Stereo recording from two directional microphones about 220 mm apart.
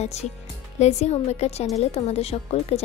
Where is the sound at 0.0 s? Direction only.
30° left (ahead or behind).